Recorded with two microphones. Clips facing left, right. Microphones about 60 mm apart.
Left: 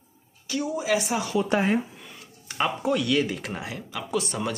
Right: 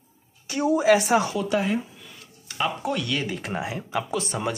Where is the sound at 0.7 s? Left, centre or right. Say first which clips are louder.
Right 8 dB; right.